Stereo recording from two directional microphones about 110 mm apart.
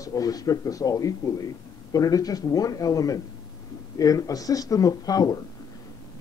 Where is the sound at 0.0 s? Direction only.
35° left (ahead or behind).